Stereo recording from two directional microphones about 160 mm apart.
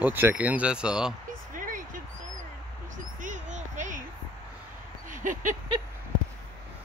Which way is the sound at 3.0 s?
55° right (ahead or behind).